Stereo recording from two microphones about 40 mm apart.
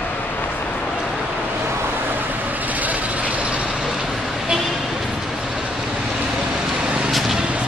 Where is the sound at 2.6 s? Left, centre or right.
Right.